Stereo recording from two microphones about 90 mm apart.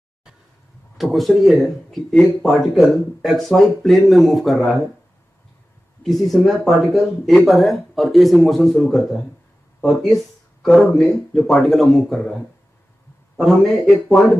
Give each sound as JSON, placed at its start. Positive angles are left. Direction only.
{"t": 1.1, "sound": "speech", "side_deg": 0}
{"t": 6.0, "sound": "speech", "side_deg": 0}
{"t": 13.4, "sound": "speech", "side_deg": 0}